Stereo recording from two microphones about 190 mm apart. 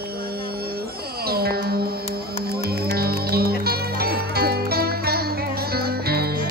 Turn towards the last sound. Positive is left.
turn(degrees=-55)  # may be behind; listen again after turning